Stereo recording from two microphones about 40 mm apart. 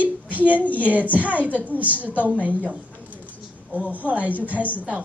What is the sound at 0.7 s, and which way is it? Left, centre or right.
A woman's voice, right.